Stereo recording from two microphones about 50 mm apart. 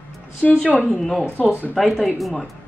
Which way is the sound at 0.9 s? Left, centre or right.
Centre.